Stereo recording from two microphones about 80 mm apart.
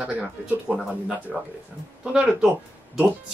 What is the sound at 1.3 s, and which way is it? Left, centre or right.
Speech, centre.